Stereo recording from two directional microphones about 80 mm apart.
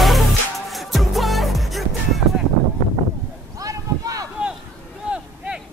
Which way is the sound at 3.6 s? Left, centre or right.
Right.